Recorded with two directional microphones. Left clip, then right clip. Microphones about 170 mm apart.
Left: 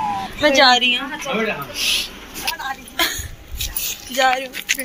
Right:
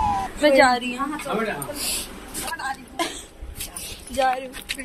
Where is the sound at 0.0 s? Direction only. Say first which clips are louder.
Left 1 dB; centre (ahead or behind).